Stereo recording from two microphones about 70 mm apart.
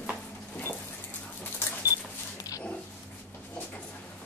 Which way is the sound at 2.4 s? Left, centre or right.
Left.